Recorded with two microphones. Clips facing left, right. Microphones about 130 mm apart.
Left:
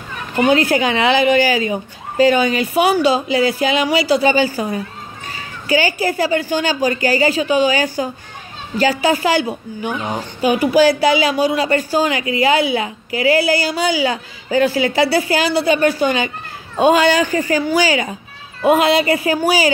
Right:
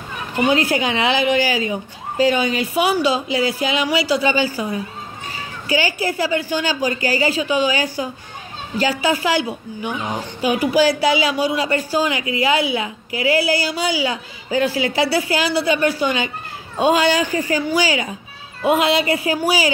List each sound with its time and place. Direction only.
0.5 s a woman's voice: 50° left (ahead or behind)
5.7 s a woman's voice: 50° left (ahead or behind)